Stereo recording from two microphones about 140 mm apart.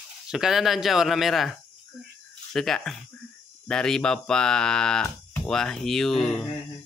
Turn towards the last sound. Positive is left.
turn(degrees=5)  # may be behind; listen again after turning